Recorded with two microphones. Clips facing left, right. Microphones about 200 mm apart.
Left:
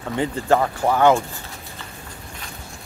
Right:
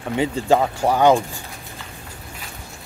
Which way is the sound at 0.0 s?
15° right (ahead or behind).